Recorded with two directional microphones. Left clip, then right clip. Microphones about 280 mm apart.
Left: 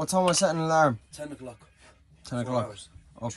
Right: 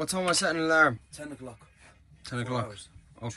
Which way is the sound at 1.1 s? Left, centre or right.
Centre.